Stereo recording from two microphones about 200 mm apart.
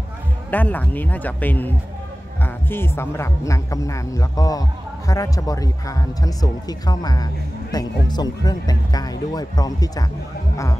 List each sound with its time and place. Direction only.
0.5 s speech: 10° left (ahead or behind)